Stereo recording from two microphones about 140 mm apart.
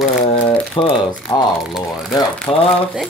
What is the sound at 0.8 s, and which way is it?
Speech, 35° left (ahead or behind).